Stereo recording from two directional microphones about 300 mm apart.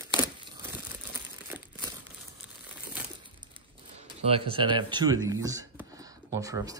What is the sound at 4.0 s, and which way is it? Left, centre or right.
Speech, centre.